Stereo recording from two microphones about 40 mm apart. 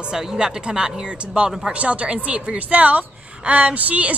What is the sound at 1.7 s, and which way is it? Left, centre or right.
Speech, right.